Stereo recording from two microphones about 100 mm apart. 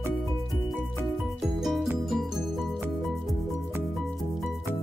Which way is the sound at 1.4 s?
5° right (ahead or behind).